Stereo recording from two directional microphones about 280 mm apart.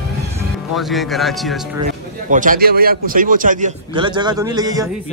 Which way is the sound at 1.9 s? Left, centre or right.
Right.